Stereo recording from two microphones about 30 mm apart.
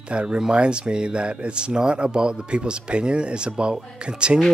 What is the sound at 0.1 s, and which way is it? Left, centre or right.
Speech, right.